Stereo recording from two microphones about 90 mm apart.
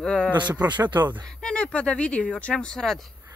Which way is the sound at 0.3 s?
60° right (ahead or behind).